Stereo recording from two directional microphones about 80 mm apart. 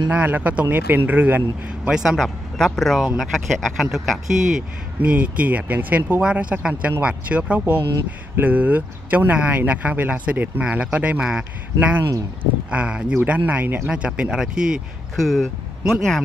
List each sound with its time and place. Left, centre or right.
0.1 s speech: right
1.9 s speech: centre
2.1 s speech: centre
5.0 s speech: centre
12.7 s speech: centre